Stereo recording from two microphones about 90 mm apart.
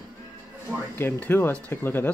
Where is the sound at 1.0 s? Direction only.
20° left (ahead or behind).